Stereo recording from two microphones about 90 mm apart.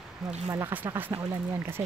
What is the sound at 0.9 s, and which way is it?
Speech, 25° right (ahead or behind).